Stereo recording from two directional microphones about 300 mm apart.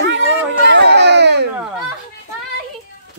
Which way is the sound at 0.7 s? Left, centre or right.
Right.